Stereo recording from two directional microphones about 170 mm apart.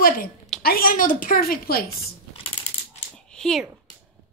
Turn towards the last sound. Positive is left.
turn(degrees=5)  # may be behind; listen again after turning